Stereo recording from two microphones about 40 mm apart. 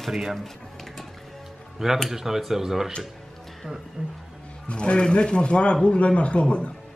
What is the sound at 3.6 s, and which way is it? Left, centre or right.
Speech, right.